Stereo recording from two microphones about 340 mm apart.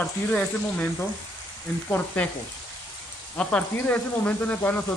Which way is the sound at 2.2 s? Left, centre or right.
Centre.